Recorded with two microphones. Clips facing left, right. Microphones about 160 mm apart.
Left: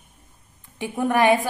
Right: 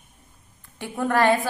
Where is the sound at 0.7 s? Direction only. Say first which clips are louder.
Left 1 dB; 15° left (ahead or behind).